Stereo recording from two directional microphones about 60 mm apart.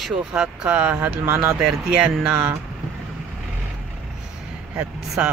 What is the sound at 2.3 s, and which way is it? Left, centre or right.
Speech, right.